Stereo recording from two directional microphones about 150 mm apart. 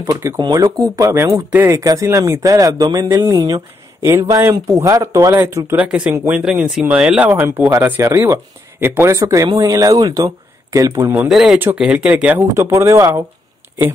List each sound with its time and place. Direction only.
0.0 s speech: 15° right (ahead or behind)
0.4 s speech: 30° right (ahead or behind)
6.3 s speech: 5° right (ahead or behind); by 11.1 s 20° right (ahead or behind)
11.1 s speech: centre (ahead or behind); by 13.2 s 20° right (ahead or behind)